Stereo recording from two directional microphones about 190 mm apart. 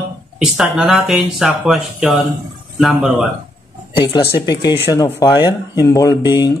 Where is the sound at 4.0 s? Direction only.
25° left (ahead or behind).